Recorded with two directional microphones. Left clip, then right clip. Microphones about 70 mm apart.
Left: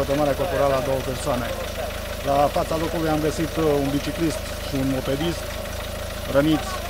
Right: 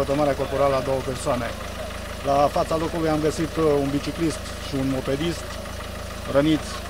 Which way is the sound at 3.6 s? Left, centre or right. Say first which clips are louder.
Right 1 dB; centre.